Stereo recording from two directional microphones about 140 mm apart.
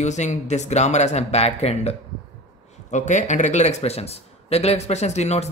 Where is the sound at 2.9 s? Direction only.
60° left (ahead or behind).